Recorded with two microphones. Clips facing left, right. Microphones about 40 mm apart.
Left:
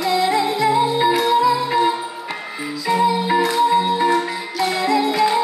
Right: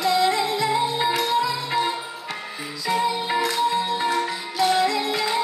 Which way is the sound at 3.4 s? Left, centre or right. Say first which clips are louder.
Left 6 dB; centre.